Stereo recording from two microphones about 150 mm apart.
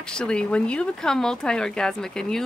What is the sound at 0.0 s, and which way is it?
Speech, 5° left (ahead or behind).